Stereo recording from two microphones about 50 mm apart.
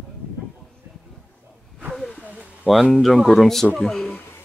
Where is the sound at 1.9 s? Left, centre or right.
Centre.